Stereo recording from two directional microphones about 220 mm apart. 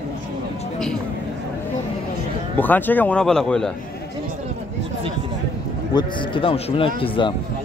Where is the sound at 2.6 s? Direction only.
10° left (ahead or behind).